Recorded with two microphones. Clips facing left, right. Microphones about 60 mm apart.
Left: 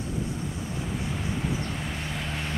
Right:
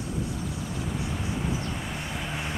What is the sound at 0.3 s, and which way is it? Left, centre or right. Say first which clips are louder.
Vehicle: even; centre.